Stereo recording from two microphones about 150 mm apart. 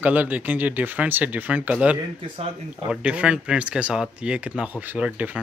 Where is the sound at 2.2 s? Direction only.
35° right (ahead or behind).